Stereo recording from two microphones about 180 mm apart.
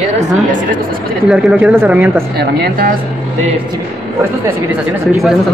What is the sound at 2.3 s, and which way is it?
Speech, 65° right (ahead or behind).